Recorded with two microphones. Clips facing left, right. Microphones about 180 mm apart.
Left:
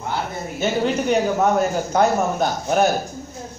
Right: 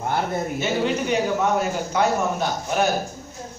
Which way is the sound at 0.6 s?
45° left (ahead or behind).